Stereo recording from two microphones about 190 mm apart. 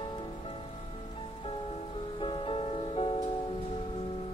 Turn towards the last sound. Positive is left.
turn(degrees=30)  # may be behind; listen again after turning